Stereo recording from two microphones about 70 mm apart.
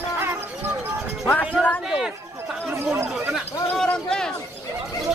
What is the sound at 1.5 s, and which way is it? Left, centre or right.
Speech, centre.